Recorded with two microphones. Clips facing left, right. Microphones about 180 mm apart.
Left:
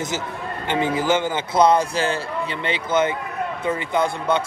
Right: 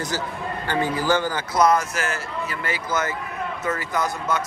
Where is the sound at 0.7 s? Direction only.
20° left (ahead or behind).